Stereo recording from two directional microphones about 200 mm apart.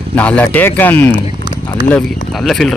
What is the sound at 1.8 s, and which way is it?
Speech, 5° left (ahead or behind).